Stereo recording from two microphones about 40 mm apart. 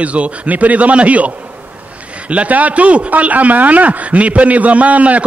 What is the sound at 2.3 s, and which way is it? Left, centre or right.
A man's voice, right.